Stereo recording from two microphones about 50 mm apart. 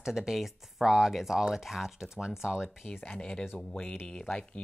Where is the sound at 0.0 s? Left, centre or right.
Centre.